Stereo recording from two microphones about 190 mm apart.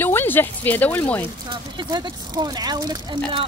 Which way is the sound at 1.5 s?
20° right (ahead or behind).